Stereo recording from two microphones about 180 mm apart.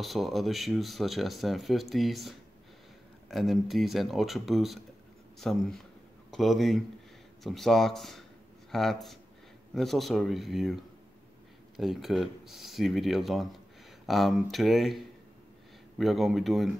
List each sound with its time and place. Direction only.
0.0 s speech: centre (ahead or behind)
16.0 s speech: centre (ahead or behind)